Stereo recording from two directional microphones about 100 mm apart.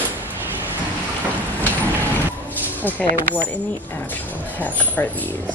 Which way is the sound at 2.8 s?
15° left (ahead or behind).